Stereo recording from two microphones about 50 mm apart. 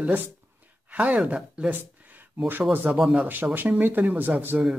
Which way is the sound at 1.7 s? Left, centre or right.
Right.